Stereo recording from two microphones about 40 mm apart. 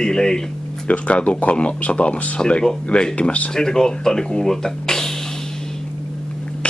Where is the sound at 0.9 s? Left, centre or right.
Left; by 5.1 s centre.